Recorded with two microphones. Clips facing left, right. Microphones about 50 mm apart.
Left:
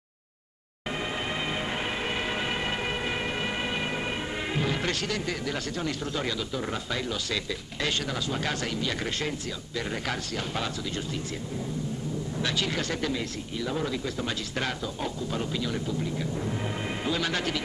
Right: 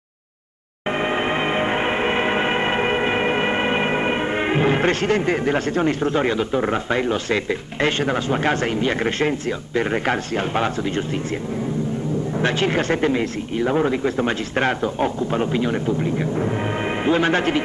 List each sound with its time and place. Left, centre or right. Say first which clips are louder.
1.0 s music: right 10 dB; right
9.8 s speech: right 11 dB; right
12.4 s speech: right 10 dB; right